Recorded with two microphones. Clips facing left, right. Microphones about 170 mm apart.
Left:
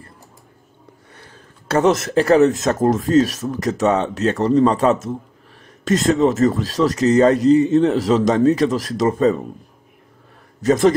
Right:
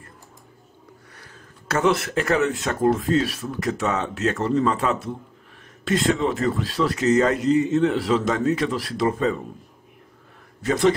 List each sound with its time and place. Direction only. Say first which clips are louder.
1.1 s a sound: left 2 dB; 30° left (ahead or behind)
1.9 s a man's voice: left 6 dB; 40° left (ahead or behind)
10.6 s a man's voice: left 5 dB; 45° left (ahead or behind)